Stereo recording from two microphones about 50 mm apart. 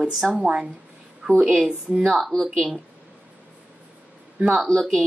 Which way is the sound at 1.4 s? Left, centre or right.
Right.